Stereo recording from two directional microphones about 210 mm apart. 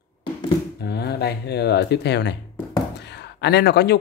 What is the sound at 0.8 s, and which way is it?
Speech, 50° left (ahead or behind).